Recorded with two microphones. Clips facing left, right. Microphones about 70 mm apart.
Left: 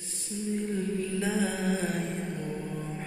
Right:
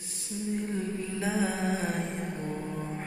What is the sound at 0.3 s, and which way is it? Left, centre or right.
Music, left.